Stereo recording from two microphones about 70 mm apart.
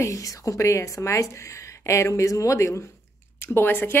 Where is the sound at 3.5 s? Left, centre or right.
Left.